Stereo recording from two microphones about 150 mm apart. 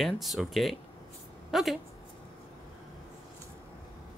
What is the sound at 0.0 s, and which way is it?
A woman's voice, centre (ahead or behind).